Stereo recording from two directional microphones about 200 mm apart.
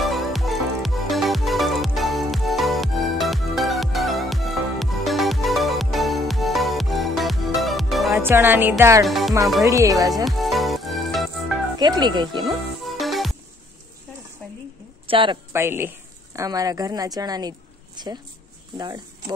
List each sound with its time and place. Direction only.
0.0 s music: centre (ahead or behind)
8.2 s music: 10° right (ahead or behind)
9.0 s speech: centre (ahead or behind)
9.7 s music: 15° right (ahead or behind)
10.2 s music: centre (ahead or behind)
11.8 s speech: 20° right (ahead or behind)
13.0 s music: centre (ahead or behind)
15.0 s speech: 25° right (ahead or behind)
15.5 s music: 10° right (ahead or behind)
16.3 s a woman's voice: 15° right (ahead or behind)